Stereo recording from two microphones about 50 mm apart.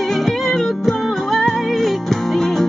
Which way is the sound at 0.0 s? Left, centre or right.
Centre.